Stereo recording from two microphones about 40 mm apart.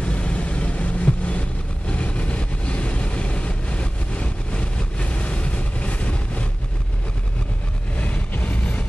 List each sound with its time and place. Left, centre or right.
0.0 s vehicle: left
7.9 s vehicle: left